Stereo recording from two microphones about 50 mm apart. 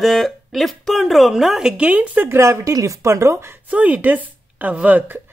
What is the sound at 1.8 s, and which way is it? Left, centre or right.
Speech, right.